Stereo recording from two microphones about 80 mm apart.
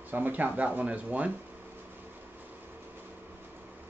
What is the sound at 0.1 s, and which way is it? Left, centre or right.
Speech, right.